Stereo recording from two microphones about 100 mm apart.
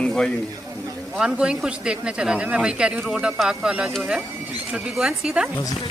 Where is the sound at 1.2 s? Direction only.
10° right (ahead or behind).